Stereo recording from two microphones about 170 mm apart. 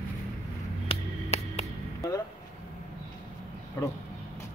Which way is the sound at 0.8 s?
35° left (ahead or behind).